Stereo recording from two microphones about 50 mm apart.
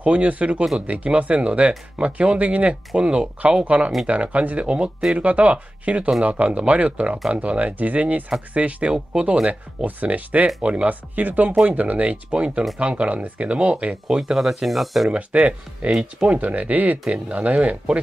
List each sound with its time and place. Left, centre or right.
0.0 s speech: right
14.0 s speech: centre
15.0 s speech: right